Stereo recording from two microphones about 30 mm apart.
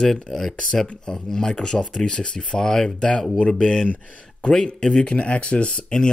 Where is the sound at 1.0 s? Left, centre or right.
Left.